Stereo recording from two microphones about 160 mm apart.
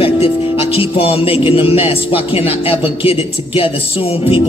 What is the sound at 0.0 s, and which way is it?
Speech, 35° left (ahead or behind).